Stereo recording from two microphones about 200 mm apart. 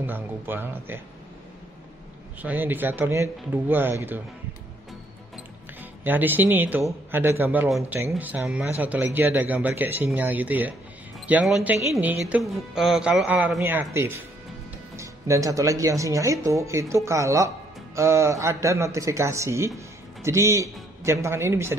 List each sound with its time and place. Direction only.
0.0 s a man's voice: 10° right (ahead or behind)
2.4 s a man's voice: 10° right (ahead or behind)
6.0 s a man's voice: 10° right (ahead or behind)